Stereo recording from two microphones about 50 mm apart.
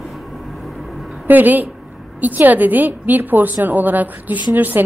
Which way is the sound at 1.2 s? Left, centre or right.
Right.